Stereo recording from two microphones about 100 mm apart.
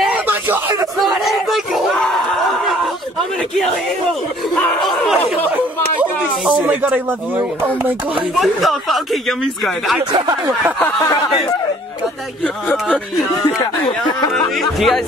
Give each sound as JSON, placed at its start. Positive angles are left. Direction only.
{"t": 0.1, "sound": "a sound", "side_deg": -20}
{"t": 1.0, "sound": "battle cry", "side_deg": 0}
{"t": 3.2, "sound": "speech", "side_deg": 5}
{"t": 4.8, "sound": "speech", "side_deg": 0}
{"t": 6.6, "sound": "speech", "side_deg": -15}
{"t": 8.4, "sound": "speech", "side_deg": 0}
{"t": 12.6, "sound": "speech", "side_deg": 5}
{"t": 14.5, "sound": "speech", "side_deg": 0}